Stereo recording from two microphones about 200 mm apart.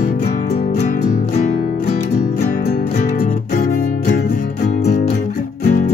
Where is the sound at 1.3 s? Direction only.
35° left (ahead or behind).